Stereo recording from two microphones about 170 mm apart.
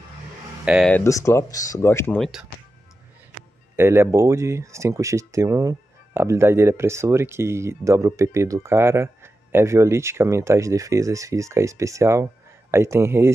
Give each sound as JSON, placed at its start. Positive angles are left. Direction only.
{"t": 0.7, "sound": "speech", "side_deg": -5}
{"t": 0.9, "sound": "speech", "side_deg": 15}
{"t": 2.1, "sound": "speech", "side_deg": 0}
{"t": 3.7, "sound": "speech", "side_deg": -15}